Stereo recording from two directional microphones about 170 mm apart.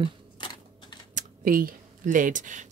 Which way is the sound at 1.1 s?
55° right (ahead or behind).